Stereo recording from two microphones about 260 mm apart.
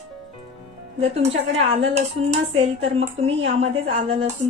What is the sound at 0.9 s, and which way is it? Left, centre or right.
A woman's voice, right.